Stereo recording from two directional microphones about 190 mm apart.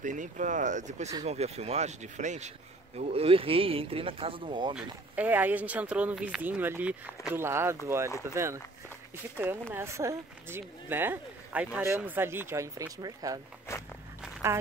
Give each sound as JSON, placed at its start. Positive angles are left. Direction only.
{"t": 0.0, "sound": "speech", "side_deg": -40}
{"t": 4.7, "sound": "speech", "side_deg": -10}
{"t": 9.4, "sound": "speech", "side_deg": -10}
{"t": 14.4, "sound": "speech", "side_deg": -15}